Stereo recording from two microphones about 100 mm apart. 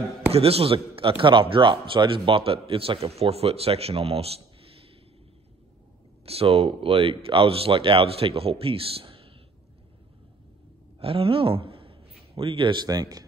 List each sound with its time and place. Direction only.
0.3 s a man's voice: 80° right
6.2 s a man's voice: 75° right (ahead or behind)
11.0 s a sound: 70° right (ahead or behind)
12.8 s speech: 40° right (ahead or behind)